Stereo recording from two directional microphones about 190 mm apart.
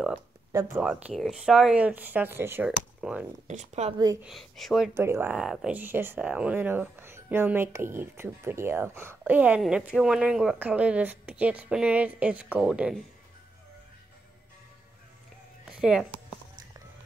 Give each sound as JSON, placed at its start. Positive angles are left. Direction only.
{"t": 0.7, "sound": "speech", "side_deg": -5}
{"t": 3.4, "sound": "speech", "side_deg": -35}
{"t": 4.2, "sound": "speech", "side_deg": 0}
{"t": 4.9, "sound": "speech", "side_deg": -15}
{"t": 15.7, "sound": "speech", "side_deg": -5}